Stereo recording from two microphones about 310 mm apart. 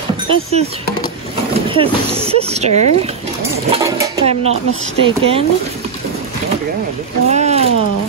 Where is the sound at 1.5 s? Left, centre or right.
Centre.